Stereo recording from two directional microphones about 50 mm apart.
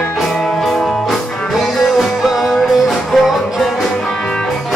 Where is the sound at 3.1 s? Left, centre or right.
Centre.